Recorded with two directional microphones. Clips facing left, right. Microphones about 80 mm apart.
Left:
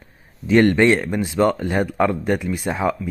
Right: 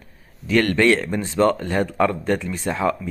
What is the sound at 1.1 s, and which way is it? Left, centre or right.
Speech, centre.